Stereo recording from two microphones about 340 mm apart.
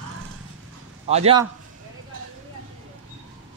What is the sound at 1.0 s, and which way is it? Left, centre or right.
Speech, centre.